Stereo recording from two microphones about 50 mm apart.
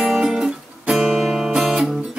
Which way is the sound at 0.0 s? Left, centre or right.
Centre.